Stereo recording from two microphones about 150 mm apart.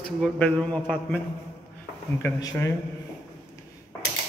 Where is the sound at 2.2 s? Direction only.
15° left (ahead or behind).